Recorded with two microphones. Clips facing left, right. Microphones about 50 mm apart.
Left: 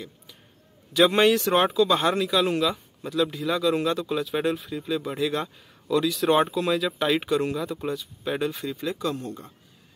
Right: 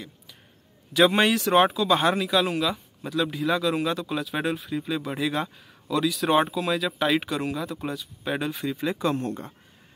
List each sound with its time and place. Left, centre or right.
0.9 s speech: centre
8.8 s speech: right
9.2 s speech: right